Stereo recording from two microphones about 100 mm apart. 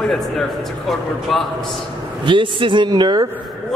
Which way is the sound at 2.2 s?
55° right (ahead or behind).